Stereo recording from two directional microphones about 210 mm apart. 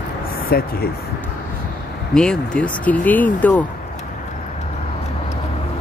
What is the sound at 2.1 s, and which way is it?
Speech, 5° left (ahead or behind).